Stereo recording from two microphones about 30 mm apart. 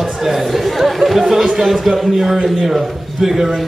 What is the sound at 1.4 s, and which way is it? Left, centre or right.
Speech, centre.